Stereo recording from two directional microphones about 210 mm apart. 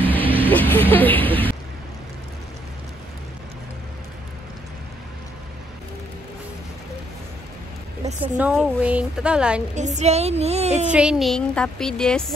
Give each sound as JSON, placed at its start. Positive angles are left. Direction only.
{"t": 0.0, "sound": "vehicle", "side_deg": 10}
{"t": 0.5, "sound": "speech", "side_deg": 10}
{"t": 8.0, "sound": "speech", "side_deg": -5}
{"t": 9.8, "sound": "a woman's voice", "side_deg": -35}
{"t": 10.9, "sound": "speech", "side_deg": -5}